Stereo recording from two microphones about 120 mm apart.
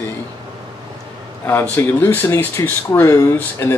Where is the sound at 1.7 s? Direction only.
15° left (ahead or behind).